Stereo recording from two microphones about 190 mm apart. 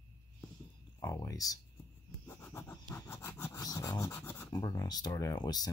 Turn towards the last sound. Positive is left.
turn(degrees=20)  # may be behind; listen again after turning